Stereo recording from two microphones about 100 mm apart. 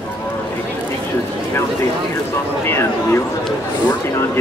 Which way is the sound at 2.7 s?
25° left (ahead or behind).